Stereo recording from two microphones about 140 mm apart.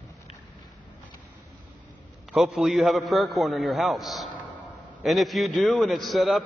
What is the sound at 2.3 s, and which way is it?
A man's voice, centre (ahead or behind).